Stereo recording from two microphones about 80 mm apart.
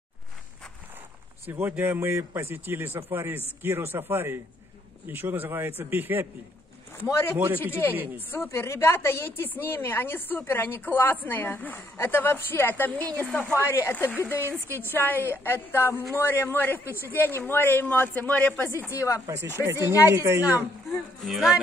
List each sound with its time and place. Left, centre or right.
1.4 s speech: right
7.1 s a man's voice: left
7.3 s speech: right
8.5 s a woman's voice: left
18.9 s a man's voice: left
19.2 s a woman's voice: right
20.9 s speech: centre